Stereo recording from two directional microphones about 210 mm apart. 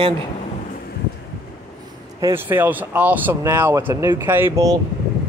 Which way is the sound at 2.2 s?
10° right (ahead or behind).